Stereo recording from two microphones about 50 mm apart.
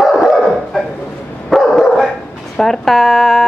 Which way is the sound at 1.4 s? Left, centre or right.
Centre.